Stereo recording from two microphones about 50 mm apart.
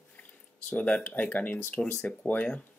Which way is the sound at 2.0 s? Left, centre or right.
Left.